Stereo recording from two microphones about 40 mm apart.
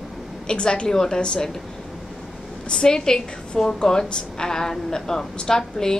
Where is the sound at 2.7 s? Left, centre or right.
Centre.